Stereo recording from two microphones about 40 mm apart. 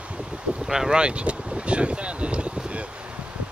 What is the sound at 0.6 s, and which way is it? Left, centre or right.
Boat, centre.